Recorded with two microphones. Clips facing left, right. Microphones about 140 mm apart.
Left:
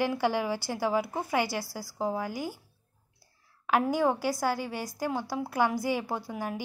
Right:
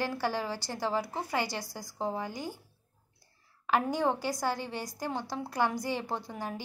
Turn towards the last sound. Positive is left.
turn(degrees=5)  # may be behind; listen again after turning